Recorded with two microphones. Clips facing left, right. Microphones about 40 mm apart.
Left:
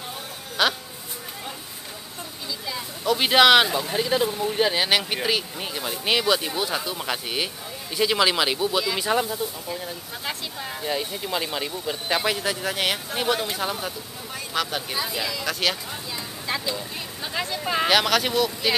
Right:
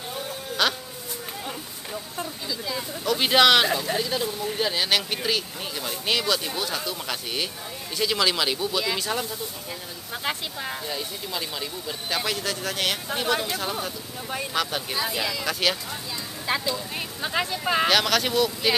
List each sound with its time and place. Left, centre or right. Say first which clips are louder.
0.6 s speech: left 2 dB; centre
2.6 s a sound: left 1 dB; centre
3.7 s speech: left 2 dB; centre
10.2 s speech: right 2 dB; centre
10.8 s speech: left 4 dB; centre
17.2 s speech: right 2 dB; centre
17.8 s speech: left 4 dB; centre